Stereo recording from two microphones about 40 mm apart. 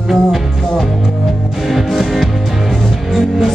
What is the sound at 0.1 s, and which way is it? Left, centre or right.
Music, centre.